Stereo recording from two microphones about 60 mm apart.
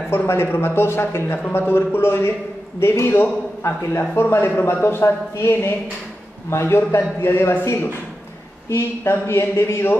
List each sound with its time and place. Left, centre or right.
0.3 s a man's voice: left